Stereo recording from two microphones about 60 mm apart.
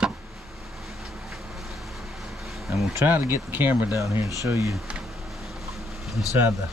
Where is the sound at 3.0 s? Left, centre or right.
Right.